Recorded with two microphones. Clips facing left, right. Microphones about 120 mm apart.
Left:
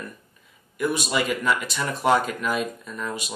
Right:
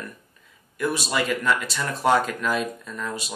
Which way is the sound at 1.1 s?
5° left (ahead or behind).